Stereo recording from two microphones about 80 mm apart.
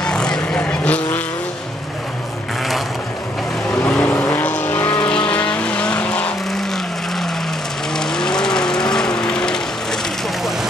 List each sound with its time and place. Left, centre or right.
0.0 s vehicle: centre
3.8 s vehicle: centre
7.9 s vehicle: centre